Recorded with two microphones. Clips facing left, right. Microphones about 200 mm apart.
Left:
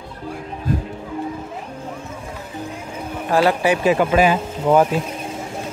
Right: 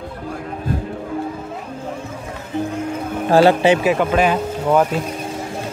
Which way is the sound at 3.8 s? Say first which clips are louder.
Left 1 dB; 5° left (ahead or behind).